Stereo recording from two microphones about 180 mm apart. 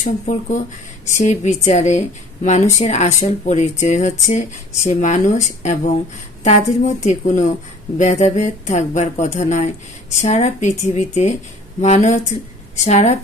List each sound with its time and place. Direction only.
0.0 s speech: 45° left (ahead or behind)